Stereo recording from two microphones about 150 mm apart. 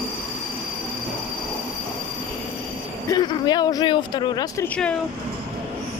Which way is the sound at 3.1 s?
30° left (ahead or behind).